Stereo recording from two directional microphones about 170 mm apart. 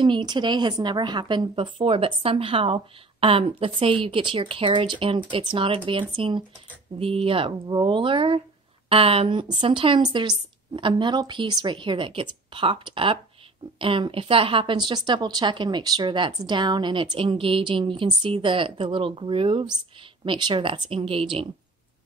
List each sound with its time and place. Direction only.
0.0 s a woman's voice: 25° right (ahead or behind)